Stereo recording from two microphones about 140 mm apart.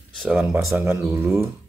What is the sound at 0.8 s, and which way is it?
Speech, 20° right (ahead or behind).